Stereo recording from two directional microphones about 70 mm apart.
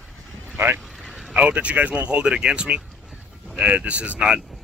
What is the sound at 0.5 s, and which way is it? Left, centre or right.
Speech, right.